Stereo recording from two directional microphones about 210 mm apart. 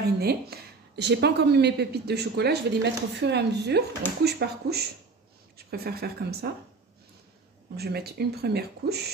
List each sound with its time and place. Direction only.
0.2 s speech: 50° right (ahead or behind)
7.7 s speech: 50° right (ahead or behind)